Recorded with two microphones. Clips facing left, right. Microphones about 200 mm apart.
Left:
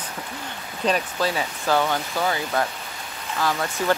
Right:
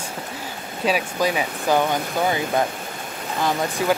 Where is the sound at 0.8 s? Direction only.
10° right (ahead or behind).